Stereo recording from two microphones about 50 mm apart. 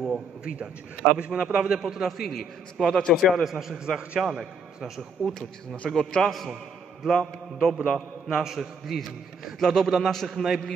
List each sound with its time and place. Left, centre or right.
0.0 s a man's voice: centre
3.7 s a man's voice: centre
5.9 s a man's voice: centre